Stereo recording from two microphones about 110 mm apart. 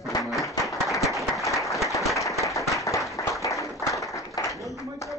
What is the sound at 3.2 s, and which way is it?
Applause, 30° left (ahead or behind).